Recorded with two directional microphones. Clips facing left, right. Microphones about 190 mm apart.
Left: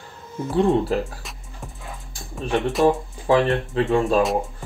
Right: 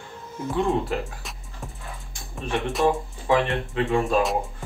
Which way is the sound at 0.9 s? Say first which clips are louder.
Left 5 dB; 35° left (ahead or behind).